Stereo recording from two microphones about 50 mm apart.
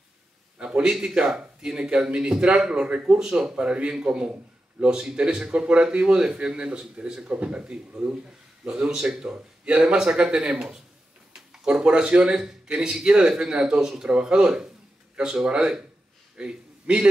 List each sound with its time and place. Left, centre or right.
0.6 s a man's voice: centre